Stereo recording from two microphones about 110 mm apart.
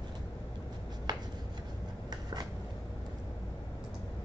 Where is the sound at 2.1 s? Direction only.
35° right (ahead or behind).